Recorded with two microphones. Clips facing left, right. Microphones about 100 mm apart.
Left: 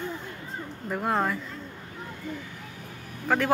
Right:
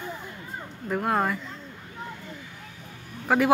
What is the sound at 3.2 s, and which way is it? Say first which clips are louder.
Speech: right 3 dB; 10° right (ahead or behind).